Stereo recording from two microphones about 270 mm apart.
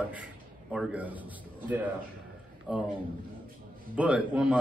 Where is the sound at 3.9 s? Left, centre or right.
Centre.